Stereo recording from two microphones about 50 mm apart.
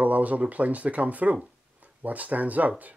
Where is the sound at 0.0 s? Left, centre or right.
Right.